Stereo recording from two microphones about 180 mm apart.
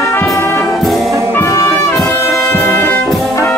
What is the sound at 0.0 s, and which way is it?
Brass instrument, 15° left (ahead or behind).